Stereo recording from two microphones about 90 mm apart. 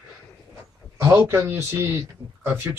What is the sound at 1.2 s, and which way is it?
Speech, 25° right (ahead or behind).